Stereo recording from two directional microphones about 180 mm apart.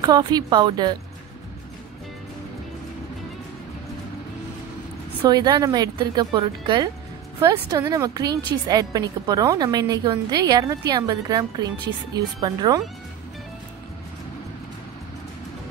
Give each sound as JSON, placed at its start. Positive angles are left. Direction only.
{"t": 0.0, "sound": "a woman's voice", "side_deg": -25}
{"t": 5.3, "sound": "a woman's voice", "side_deg": -20}